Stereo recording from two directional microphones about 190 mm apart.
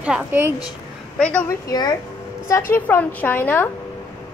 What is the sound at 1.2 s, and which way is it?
Speech, 10° left (ahead or behind).